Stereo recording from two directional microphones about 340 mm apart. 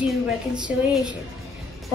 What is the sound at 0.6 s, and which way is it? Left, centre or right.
Speech, centre.